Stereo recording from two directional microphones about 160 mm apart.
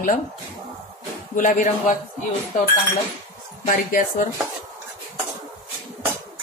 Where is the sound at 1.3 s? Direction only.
55° left (ahead or behind).